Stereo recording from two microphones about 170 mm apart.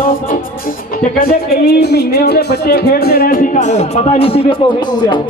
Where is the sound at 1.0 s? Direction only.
65° left (ahead or behind).